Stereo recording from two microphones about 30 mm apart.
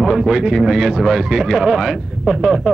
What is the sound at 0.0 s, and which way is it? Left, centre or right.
Speech, centre.